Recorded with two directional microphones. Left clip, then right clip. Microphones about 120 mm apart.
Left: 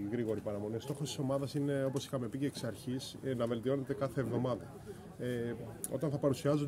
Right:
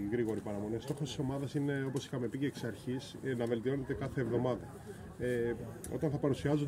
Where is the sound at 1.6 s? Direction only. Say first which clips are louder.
Left 2 dB; 35° left (ahead or behind).